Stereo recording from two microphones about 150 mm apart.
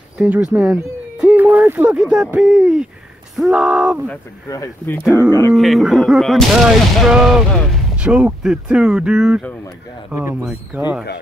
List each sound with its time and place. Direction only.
0.2 s speech: 5° right (ahead or behind)
4.5 s speech: 15° left (ahead or behind)
5.5 s speech: centre (ahead or behind)